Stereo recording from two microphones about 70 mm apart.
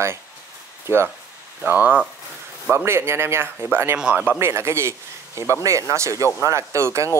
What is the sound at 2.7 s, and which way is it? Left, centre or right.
A man's voice, right.